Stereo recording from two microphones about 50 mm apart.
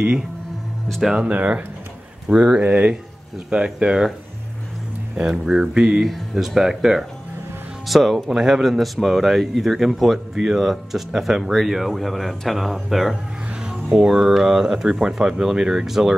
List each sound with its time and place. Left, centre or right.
0.8 s speech: centre
1.1 s speech: right
2.2 s speech: centre
2.6 s speech: right
3.4 s speech: centre
5.1 s speech: centre
6.3 s speech: centre